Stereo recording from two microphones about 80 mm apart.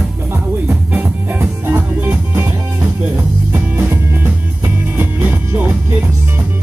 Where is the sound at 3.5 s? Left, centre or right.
Right.